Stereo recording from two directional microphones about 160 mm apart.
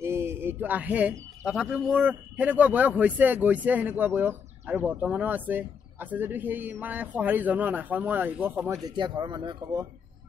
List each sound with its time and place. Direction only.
0.0 s a sound: 15° right (ahead or behind)
1.4 s a man's voice: 5° right (ahead or behind)
8.8 s speech: 30° right (ahead or behind)